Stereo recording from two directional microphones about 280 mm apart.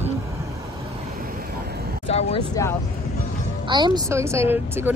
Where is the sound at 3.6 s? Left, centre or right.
Centre.